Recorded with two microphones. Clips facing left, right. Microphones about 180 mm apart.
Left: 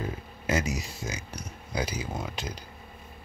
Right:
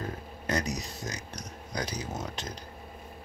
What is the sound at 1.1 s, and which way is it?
Speech, 40° right (ahead or behind).